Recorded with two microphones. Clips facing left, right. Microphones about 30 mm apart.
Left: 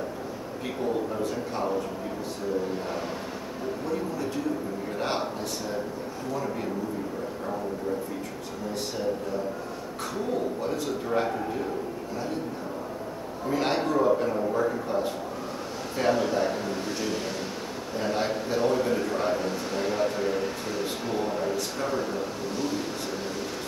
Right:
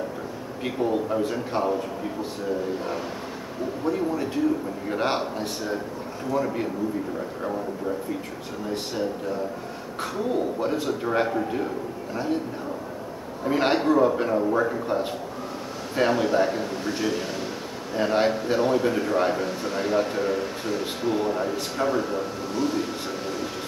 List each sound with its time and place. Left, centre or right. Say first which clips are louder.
0.7 s a man's voice: right 4 dB; centre
3.8 s a man's voice: right 6 dB; centre
6.3 s a man's voice: right 6 dB; right
10.6 s a man's voice: right 4 dB; right
13.5 s a man's voice: right 5 dB; right
16.0 s a man's voice: right 3 dB; centre
17.9 s a man's voice: right 6 dB; right